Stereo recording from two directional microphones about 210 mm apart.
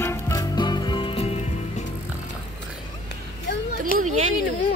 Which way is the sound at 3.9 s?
40° left (ahead or behind).